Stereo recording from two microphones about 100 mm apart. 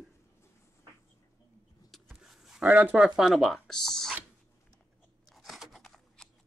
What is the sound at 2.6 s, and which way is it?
Speech, 15° right (ahead or behind).